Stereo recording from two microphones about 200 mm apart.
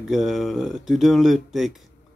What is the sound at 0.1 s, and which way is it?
Speech, centre (ahead or behind).